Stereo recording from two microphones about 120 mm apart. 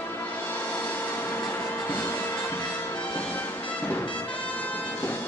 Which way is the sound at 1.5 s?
20° left (ahead or behind).